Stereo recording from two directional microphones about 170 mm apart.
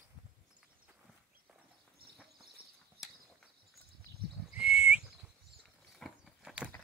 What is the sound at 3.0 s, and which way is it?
Horse, centre (ahead or behind).